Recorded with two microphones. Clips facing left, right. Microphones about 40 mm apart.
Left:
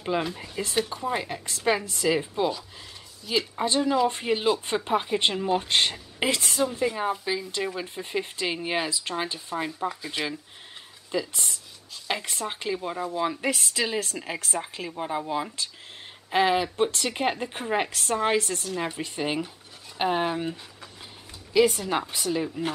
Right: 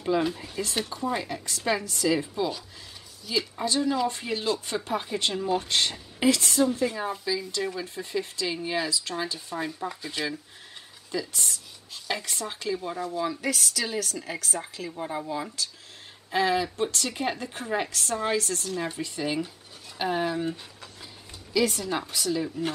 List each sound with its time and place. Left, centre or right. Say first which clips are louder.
0.2 s speech: right 3 dB; centre
0.8 s speech: left 1 dB; centre
1.3 s speech: left 2 dB; left
3.8 s speech: left 3 dB; centre
4.1 s speech: left 4 dB; left
9.7 s speech: left 3 dB; centre
11.1 s a woman's voice: left 2 dB; left
14.9 s speech: left 2 dB; left